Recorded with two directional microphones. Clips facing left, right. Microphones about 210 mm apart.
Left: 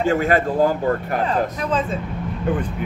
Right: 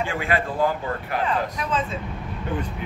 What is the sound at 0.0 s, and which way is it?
Speech, 45° left (ahead or behind).